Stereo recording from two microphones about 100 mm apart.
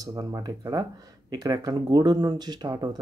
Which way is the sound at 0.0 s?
35° right (ahead or behind).